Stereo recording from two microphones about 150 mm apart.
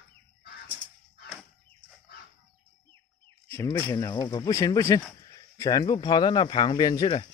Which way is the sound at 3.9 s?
25° left (ahead or behind).